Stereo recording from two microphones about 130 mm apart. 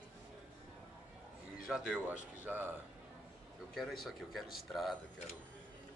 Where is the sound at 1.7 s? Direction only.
10° right (ahead or behind).